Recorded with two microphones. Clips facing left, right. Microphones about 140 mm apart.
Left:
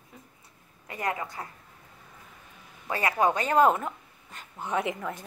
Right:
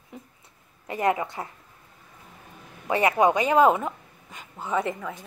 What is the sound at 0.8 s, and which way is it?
Speech, 25° right (ahead or behind).